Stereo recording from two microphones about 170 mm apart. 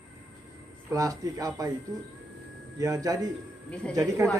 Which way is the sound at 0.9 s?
20° right (ahead or behind).